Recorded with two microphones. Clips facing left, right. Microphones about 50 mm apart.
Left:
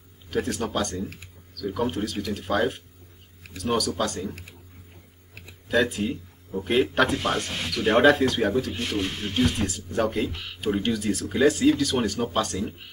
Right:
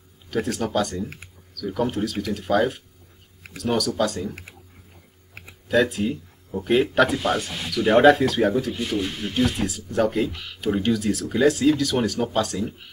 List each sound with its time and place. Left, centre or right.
0.3 s speech: centre
5.7 s speech: centre
8.7 s speech: left
9.3 s speech: centre